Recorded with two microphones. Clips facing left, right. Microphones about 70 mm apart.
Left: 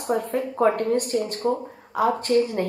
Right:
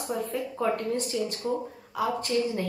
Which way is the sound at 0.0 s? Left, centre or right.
Left.